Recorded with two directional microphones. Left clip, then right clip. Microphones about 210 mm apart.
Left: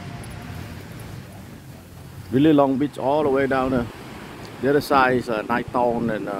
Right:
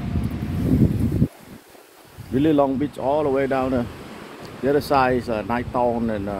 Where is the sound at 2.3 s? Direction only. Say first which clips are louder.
Left 2 dB; 25° left (ahead or behind).